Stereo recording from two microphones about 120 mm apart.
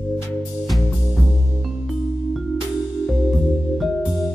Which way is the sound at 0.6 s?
Centre (ahead or behind).